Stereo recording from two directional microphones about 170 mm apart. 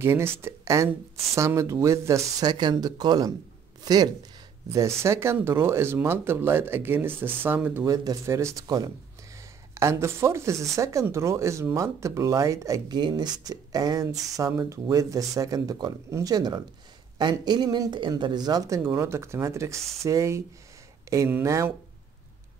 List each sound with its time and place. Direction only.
0.0 s speech: 15° right (ahead or behind)